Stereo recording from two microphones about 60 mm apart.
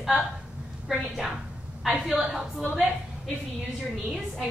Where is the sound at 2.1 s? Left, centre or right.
Centre.